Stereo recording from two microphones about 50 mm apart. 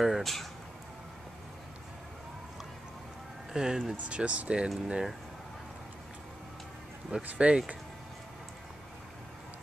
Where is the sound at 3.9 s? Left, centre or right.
Right.